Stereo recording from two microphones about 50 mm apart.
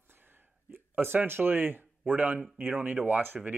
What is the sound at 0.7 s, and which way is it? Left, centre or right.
Speech, right.